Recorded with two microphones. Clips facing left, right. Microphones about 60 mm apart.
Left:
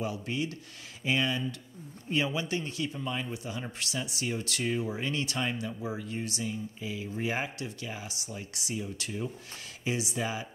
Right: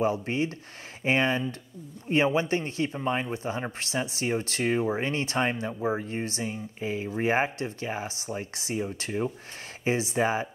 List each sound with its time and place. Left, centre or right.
0.0 s speech: right